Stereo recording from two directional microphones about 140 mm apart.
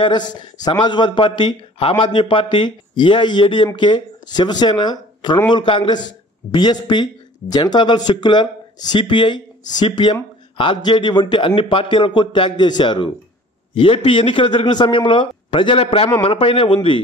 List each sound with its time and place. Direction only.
0.0 s speech: 30° left (ahead or behind)